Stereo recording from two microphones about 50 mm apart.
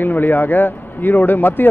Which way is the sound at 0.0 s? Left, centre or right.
Left.